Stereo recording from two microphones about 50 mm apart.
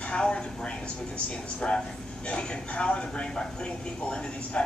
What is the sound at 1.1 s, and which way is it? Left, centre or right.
Speech, left.